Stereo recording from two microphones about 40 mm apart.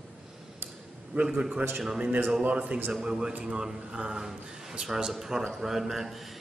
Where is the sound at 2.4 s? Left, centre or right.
Right.